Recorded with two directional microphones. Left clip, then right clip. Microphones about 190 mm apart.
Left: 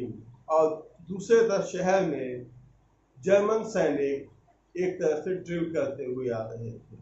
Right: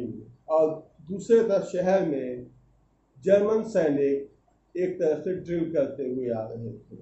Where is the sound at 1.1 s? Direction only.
30° right (ahead or behind).